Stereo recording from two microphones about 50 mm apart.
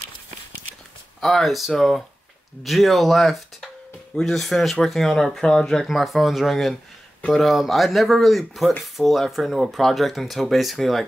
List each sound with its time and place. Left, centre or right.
1.2 s speech: centre
5.9 s speech: centre